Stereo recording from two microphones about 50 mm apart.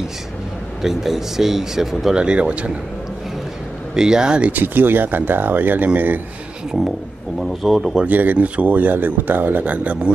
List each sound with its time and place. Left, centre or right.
0.8 s speech: centre
2.1 s speech: centre
3.9 s speech: centre
4.5 s speech: right
7.3 s speech: centre
8.0 s speech: right